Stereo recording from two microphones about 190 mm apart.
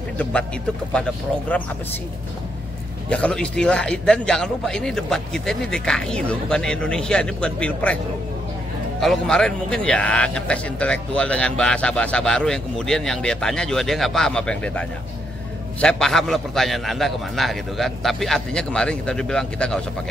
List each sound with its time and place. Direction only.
0.2 s a man's voice: 5° left (ahead or behind)
3.1 s a man's voice: 5° left (ahead or behind)
9.0 s a man's voice: 5° left (ahead or behind)